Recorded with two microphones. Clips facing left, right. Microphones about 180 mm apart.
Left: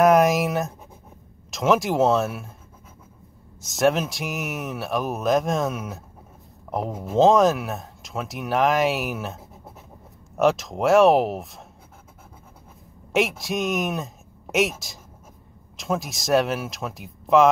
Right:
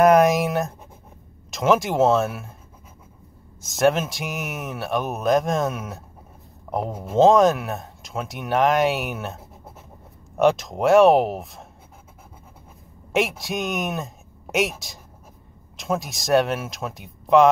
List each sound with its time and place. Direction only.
0.0 s writing: centre (ahead or behind)
1.5 s speech: centre (ahead or behind)
3.6 s speech: centre (ahead or behind)
13.1 s speech: centre (ahead or behind)